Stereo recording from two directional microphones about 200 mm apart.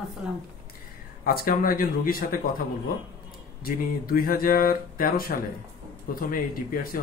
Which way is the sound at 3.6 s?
45° left (ahead or behind).